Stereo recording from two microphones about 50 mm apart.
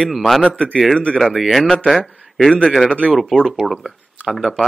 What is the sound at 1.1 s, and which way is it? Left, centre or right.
Speech, centre.